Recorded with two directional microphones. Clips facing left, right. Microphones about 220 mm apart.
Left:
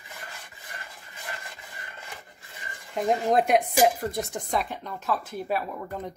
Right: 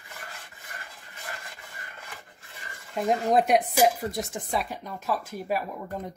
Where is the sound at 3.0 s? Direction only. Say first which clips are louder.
Even; centre (ahead or behind).